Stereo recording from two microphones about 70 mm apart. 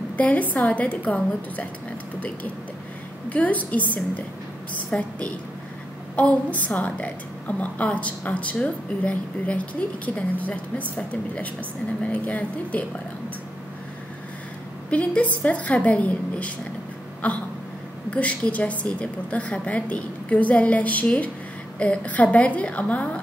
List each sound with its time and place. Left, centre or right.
0.2 s a woman's voice: left
3.3 s a woman's voice: left
6.1 s a woman's voice: left
14.9 s a woman's voice: centre